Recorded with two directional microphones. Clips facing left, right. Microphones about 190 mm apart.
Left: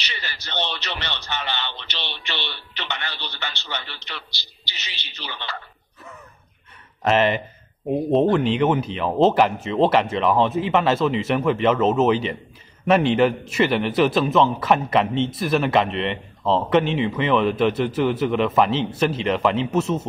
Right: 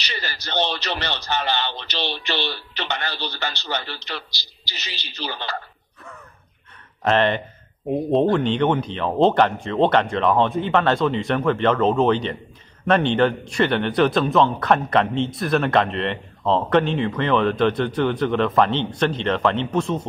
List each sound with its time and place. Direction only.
0.0 s a man's voice: 40° right (ahead or behind)
7.0 s a man's voice: 5° left (ahead or behind)